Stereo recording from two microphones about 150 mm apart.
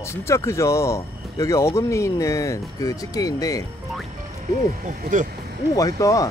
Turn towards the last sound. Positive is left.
turn(degrees=20)  # may be behind; listen again after turning